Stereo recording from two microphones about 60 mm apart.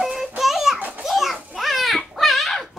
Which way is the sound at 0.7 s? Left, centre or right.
Right.